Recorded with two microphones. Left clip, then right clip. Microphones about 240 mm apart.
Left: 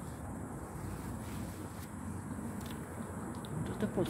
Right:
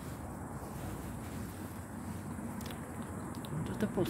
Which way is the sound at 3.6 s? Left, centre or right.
Centre.